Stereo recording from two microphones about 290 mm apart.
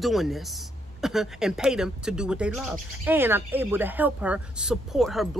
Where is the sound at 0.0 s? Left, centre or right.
Centre.